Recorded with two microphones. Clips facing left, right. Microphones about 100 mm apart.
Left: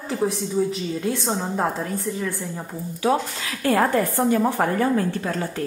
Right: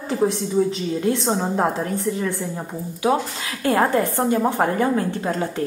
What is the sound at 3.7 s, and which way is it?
A woman's voice, 20° right (ahead or behind).